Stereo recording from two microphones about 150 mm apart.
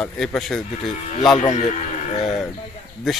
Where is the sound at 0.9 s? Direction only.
50° left (ahead or behind).